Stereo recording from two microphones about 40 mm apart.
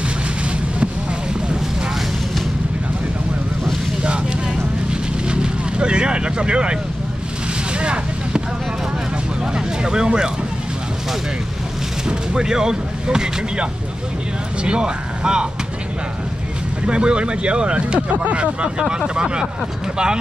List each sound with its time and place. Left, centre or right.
5.3 s vehicle: right
7.8 s vehicle: right
9.5 s vehicle: centre
12.1 s speech: centre
16.8 s speech: right